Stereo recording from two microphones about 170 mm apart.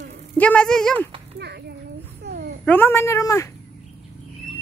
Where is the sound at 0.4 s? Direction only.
5° left (ahead or behind).